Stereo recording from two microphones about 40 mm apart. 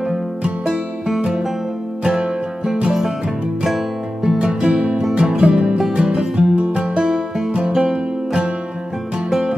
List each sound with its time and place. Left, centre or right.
0.7 s music: centre
4.6 s music: centre
7.0 s music: centre